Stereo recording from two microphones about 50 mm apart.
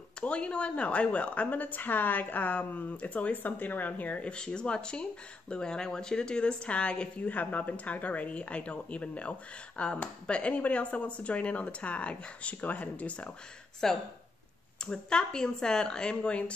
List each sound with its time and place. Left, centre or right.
0.2 s a woman's voice: left
7.2 s a woman's voice: left
13.8 s a woman's voice: centre